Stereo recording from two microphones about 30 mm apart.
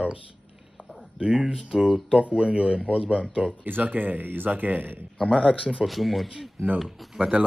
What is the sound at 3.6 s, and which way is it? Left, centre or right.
Speech, right.